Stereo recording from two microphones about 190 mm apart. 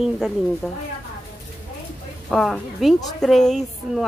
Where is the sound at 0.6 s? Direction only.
Centre (ahead or behind).